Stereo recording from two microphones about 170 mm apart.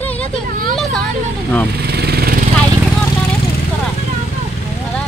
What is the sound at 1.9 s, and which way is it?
Vehicle, 70° right (ahead or behind).